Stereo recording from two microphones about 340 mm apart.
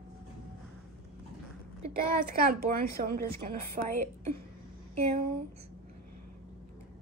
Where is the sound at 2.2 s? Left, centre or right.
Right.